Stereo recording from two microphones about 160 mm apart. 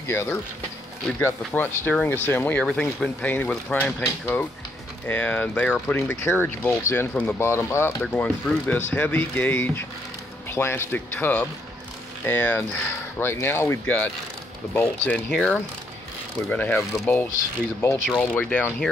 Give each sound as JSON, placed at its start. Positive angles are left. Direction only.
{"t": 0.0, "sound": "speech", "side_deg": 15}